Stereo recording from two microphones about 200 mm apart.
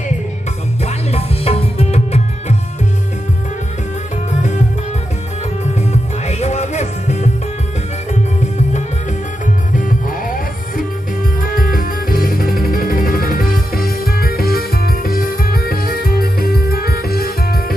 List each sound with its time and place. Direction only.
0.8 s music: 30° left (ahead or behind)
5.8 s music: 35° left (ahead or behind)
9.8 s music: 45° left (ahead or behind)
11.5 s music: 45° left (ahead or behind)